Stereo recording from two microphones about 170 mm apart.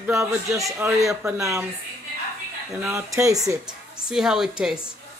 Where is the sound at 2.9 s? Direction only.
20° right (ahead or behind).